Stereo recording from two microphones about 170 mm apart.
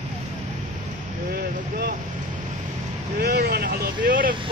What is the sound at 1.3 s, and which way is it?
Vehicle, 70° right (ahead or behind).